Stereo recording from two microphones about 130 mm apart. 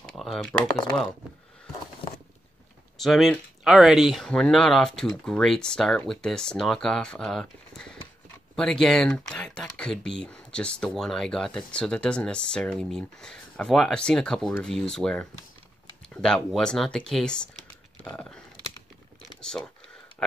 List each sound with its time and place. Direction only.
0.2 s speech: 5° left (ahead or behind)
3.0 s speech: centre (ahead or behind)
19.2 s a sound: 5° left (ahead or behind)